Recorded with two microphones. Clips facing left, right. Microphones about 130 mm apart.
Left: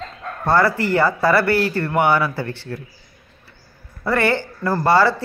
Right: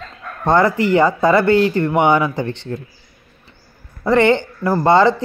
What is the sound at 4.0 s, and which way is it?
A woman's voice, 20° right (ahead or behind).